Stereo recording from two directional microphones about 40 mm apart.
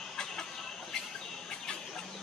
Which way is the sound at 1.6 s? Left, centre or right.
Centre.